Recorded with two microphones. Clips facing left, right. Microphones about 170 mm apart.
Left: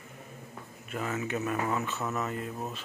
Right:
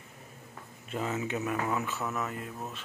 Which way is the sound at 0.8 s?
25° right (ahead or behind).